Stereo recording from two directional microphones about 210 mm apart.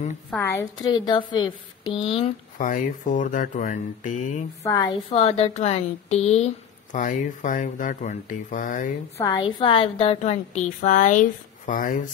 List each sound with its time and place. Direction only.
0.3 s a woman's voice: 10° left (ahead or behind)
2.0 s a woman's voice: 30° left (ahead or behind)
9.2 s speech: 20° left (ahead or behind); by 12.1 s 40° left (ahead or behind)